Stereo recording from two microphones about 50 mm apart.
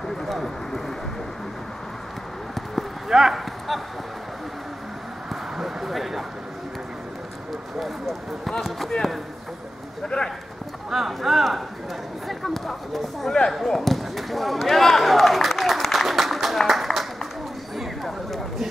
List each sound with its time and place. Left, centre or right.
0.2 s vehicle: centre
3.1 s clip-clop: centre
5.3 s a sound: centre
8.5 s speech: centre
10.0 s speech: centre
10.9 s speech: centre
13.5 s basketball bounce: centre
17.7 s a sound: centre